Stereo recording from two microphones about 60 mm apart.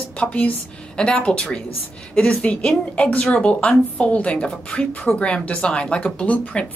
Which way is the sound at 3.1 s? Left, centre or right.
Left.